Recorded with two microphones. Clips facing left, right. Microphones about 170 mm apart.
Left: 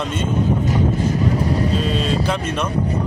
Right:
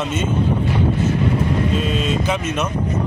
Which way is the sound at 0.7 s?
35° left (ahead or behind).